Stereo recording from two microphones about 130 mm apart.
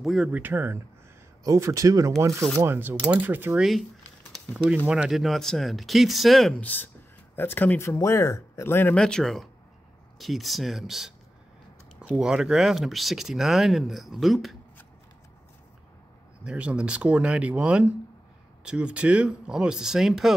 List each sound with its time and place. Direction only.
0.0 s speech: centre (ahead or behind)
0.3 s speech: 15° right (ahead or behind)
4.8 s speech: 5° right (ahead or behind); by 8.9 s 15° left (ahead or behind)
8.9 s speech: 5° left (ahead or behind)
12.2 s speech: 5° right (ahead or behind)
16.4 s speech: 10° right (ahead or behind)